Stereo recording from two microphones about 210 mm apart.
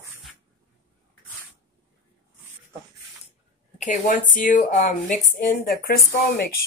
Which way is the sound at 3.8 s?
40° left (ahead or behind).